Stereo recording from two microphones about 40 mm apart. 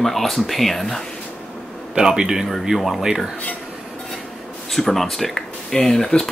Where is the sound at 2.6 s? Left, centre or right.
Centre.